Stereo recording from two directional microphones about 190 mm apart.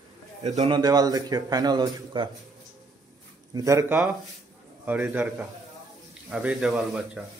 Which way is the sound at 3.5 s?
15° right (ahead or behind).